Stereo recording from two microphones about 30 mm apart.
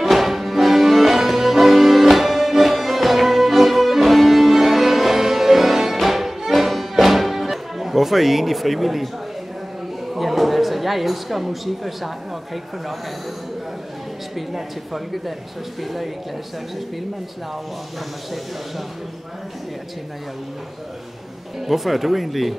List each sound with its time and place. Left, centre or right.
0.0 s music: centre
10.1 s speech: centre
14.3 s a woman's voice: centre
21.6 s a woman's voice: centre